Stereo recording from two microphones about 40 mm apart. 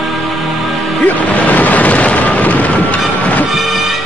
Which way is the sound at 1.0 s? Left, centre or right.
Left.